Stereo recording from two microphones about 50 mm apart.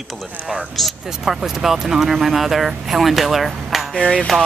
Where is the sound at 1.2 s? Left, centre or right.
Centre.